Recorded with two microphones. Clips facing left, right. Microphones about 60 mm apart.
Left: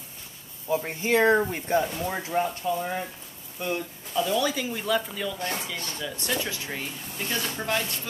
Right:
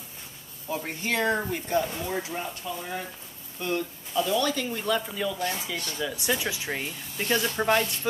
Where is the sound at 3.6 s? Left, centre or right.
Centre.